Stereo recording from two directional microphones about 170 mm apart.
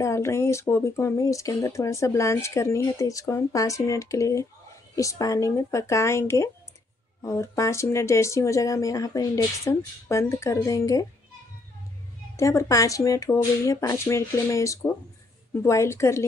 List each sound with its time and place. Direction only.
0.0 s speech: 15° left (ahead or behind)
12.4 s speech: 20° left (ahead or behind)